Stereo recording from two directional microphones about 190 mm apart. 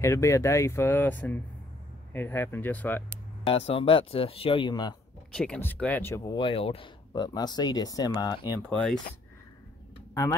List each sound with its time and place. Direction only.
0.0 s speech: 15° left (ahead or behind)
3.4 s speech: 30° left (ahead or behind)
5.3 s speech: 5° left (ahead or behind)
6.3 s speech: 30° left (ahead or behind)
8.6 s speech: 5° left (ahead or behind)